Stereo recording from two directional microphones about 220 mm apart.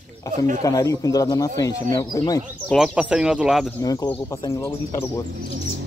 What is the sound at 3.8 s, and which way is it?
Speech, 15° left (ahead or behind).